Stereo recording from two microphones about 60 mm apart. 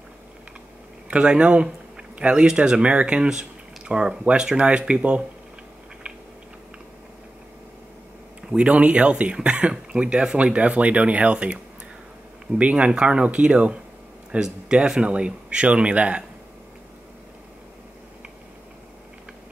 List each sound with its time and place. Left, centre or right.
1.1 s speech: centre
8.4 s speech: centre